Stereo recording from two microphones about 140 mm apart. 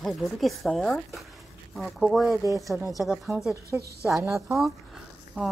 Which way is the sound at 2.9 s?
Centre (ahead or behind).